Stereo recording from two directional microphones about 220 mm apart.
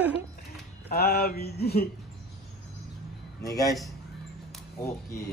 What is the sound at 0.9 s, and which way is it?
Mantra, 45° left (ahead or behind).